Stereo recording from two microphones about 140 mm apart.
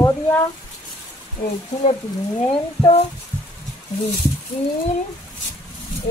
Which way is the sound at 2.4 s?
40° left (ahead or behind).